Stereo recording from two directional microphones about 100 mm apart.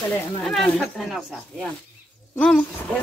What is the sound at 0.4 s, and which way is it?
Speech, 10° left (ahead or behind).